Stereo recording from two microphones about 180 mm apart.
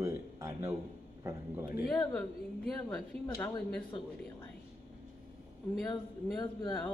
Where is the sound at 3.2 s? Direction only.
15° left (ahead or behind).